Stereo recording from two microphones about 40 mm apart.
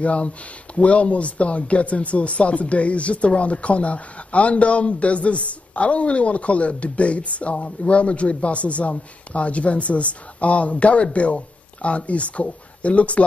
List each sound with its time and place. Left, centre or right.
0.0 s speech: left